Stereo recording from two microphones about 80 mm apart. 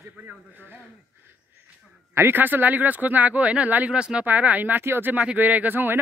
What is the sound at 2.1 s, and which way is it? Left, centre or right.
Speech, right.